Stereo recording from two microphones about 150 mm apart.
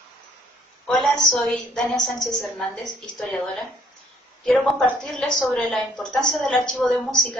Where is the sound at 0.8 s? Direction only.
Centre (ahead or behind).